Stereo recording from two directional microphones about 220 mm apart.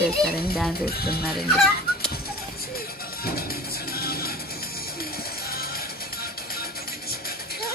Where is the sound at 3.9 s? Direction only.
45° left (ahead or behind).